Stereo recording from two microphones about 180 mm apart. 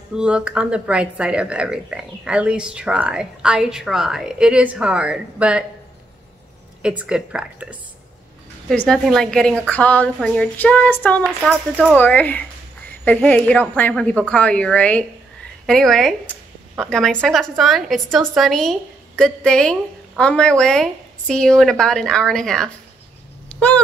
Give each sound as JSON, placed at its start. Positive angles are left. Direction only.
{"t": 0.1, "sound": "a woman's voice", "side_deg": -5}
{"t": 6.8, "sound": "a woman's voice", "side_deg": -5}
{"t": 23.5, "sound": "a sound", "side_deg": 10}